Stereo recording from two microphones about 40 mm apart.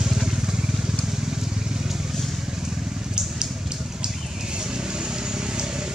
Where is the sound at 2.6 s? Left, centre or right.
Centre.